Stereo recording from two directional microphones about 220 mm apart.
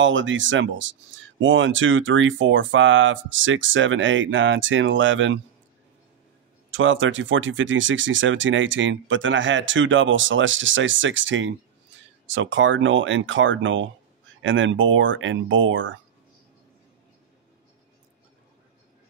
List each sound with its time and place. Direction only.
0.0 s speech: 60° right (ahead or behind)
6.7 s speech: 60° right (ahead or behind)